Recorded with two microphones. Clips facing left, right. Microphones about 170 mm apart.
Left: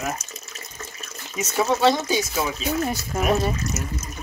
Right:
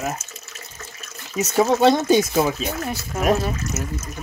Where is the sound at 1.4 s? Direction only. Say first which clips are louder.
Right 3 dB; 40° right (ahead or behind).